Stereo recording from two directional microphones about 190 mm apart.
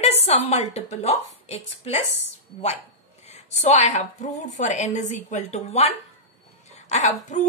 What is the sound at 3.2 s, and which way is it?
A woman's voice, 35° left (ahead or behind).